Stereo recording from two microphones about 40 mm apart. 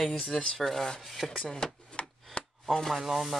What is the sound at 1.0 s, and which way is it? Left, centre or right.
Speech, centre.